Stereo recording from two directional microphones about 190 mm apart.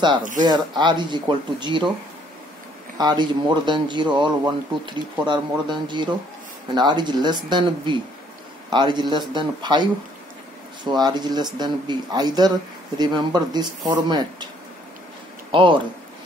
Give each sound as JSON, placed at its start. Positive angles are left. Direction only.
{"t": 0.4, "sound": "speech", "side_deg": -25}
{"t": 3.0, "sound": "speech", "side_deg": -20}